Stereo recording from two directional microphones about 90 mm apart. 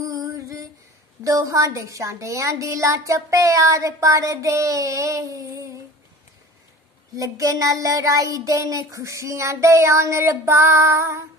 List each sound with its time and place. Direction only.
0.0 s a sound: 40° right (ahead or behind)
1.2 s a woman's voice: 35° right (ahead or behind)
7.2 s a woman's voice: 35° right (ahead or behind)